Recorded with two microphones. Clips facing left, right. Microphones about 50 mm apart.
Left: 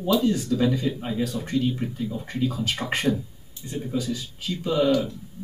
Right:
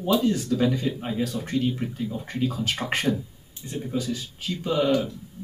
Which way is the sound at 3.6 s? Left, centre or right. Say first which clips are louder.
Left 1 dB; centre.